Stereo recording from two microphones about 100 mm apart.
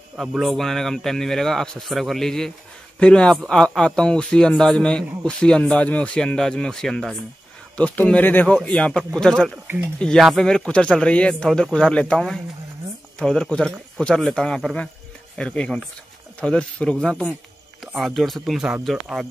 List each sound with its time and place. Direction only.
0.2 s speech: centre (ahead or behind)